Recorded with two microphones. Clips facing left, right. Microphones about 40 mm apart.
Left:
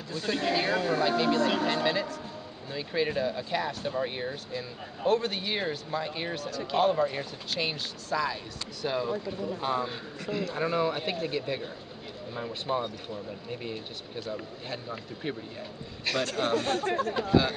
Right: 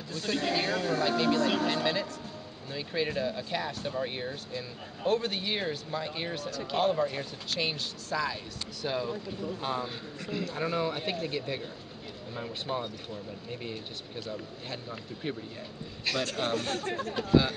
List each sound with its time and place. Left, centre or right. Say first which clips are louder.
0.1 s speech: left 2 dB; centre
9.1 s speech: left 3 dB; left
9.6 s speech: left 4 dB; centre
16.8 s speech: left 5 dB; left
17.1 s speech: right 2 dB; centre